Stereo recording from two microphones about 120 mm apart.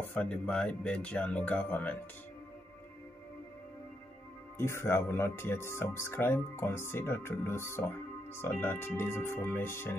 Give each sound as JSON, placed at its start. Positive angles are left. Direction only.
{"t": 0.0, "sound": "speech", "side_deg": 15}
{"t": 4.6, "sound": "speech", "side_deg": 20}